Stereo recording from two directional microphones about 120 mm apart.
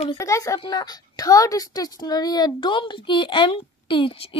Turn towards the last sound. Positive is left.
turn(degrees=45)  # may be behind; listen again after turning